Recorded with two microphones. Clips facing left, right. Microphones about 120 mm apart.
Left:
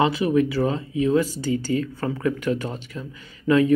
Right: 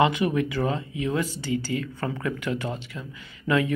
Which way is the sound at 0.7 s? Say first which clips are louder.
Left 5 dB; 25° left (ahead or behind).